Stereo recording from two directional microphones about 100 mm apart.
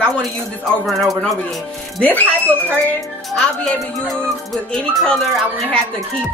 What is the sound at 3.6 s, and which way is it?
Speech, 5° left (ahead or behind).